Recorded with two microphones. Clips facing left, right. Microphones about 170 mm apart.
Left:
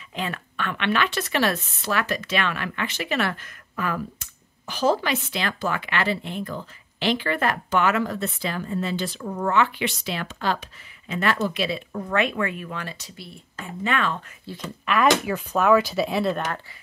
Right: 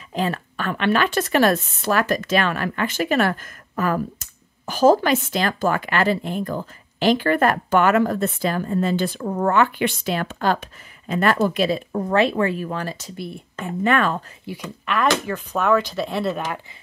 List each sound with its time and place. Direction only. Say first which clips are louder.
0.1 s speech: right 7 dB; 40° right (ahead or behind)
14.4 s speech: right 3 dB; 10° right (ahead or behind)
15.2 s speech: left 1 dB; 5° left (ahead or behind)